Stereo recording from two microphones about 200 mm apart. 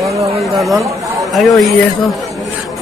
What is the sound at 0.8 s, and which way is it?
Speech, 15° right (ahead or behind).